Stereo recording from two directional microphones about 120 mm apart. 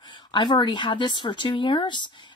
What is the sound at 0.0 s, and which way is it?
Speech, 40° left (ahead or behind).